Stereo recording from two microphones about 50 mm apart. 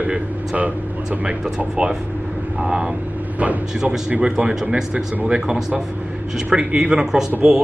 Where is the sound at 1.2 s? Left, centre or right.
Centre.